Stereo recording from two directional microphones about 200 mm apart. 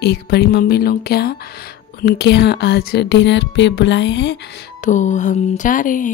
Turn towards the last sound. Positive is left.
turn(degrees=40)  # may be behind; listen again after turning